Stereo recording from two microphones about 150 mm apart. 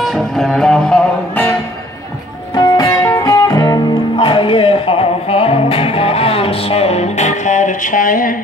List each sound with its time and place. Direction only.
0.0 s music: centre (ahead or behind)
2.5 s music: 25° left (ahead or behind); by 8.4 s 65° left (ahead or behind)